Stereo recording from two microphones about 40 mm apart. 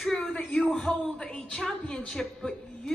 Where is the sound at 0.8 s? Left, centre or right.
Left.